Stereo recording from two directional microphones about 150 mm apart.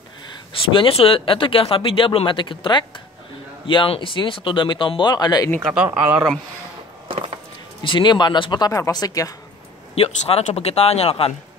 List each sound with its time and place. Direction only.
0.5 s speech: 35° left (ahead or behind)
5.6 s speech: 5° right (ahead or behind)
5.9 s speech: 15° right (ahead or behind)
7.8 s speech: 30° left (ahead or behind)
9.9 s speech: 40° left (ahead or behind)